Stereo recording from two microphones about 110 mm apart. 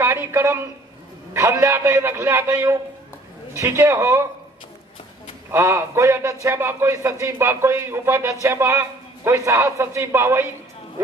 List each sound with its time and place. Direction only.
0.0 s a man's voice: 20° right (ahead or behind)
5.5 s speech: 25° right (ahead or behind)